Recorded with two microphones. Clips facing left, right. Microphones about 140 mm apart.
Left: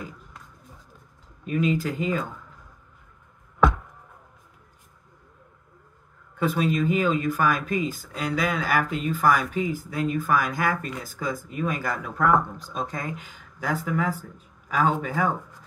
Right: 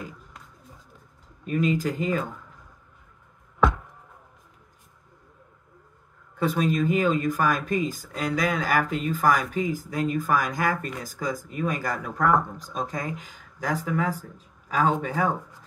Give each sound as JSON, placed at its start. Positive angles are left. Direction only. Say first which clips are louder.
{"t": 1.4, "sound": "speech", "louder": "even", "side_deg": -40}
{"t": 6.3, "sound": "speech", "louder": "even", "side_deg": -40}